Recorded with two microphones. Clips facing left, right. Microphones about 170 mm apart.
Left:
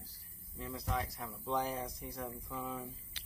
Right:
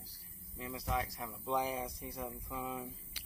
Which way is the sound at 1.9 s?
30° right (ahead or behind).